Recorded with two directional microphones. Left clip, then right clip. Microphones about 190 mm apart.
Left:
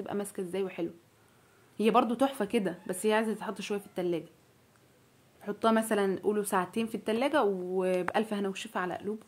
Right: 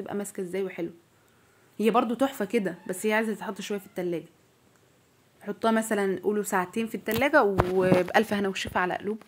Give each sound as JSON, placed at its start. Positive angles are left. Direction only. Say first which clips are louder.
{"t": 0.0, "sound": "a woman's voice", "louder": "right 2 dB", "side_deg": -20}
{"t": 5.4, "sound": "speech", "louder": "right 2 dB", "side_deg": -15}